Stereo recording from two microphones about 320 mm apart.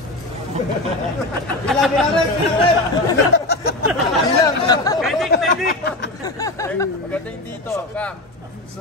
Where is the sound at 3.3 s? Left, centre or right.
Left.